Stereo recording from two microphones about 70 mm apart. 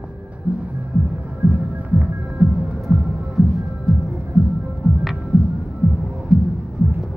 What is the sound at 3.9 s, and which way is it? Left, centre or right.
Music, centre.